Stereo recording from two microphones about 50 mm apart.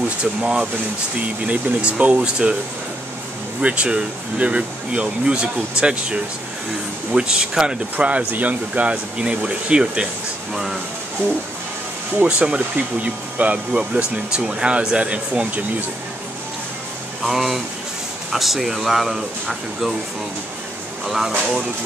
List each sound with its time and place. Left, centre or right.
0.2 s speech: centre
3.6 s speech: right
8.2 s speech: right; by 10.8 s centre
11.2 s music: right
12.3 s speech: right
17.2 s speech: centre
21.0 s speech: centre